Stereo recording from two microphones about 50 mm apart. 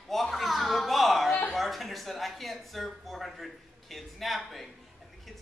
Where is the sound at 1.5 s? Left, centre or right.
Centre.